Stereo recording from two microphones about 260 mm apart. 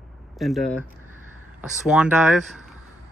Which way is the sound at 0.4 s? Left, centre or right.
Centre.